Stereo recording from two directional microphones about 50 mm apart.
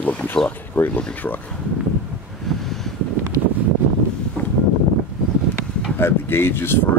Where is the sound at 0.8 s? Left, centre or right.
Left.